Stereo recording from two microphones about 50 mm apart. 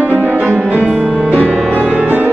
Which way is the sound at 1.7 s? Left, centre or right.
Right.